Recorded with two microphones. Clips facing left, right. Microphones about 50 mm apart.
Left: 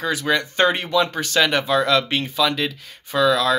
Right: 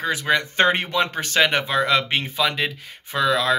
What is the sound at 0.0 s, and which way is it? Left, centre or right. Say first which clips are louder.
Speech: even; right.